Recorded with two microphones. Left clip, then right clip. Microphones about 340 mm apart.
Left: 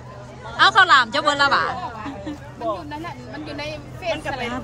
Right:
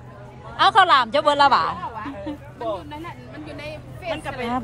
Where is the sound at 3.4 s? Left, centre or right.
Centre.